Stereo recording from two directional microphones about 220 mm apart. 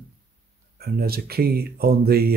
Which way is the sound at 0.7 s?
45° right (ahead or behind).